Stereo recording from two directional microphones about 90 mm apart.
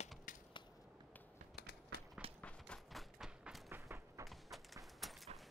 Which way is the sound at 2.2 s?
90° right.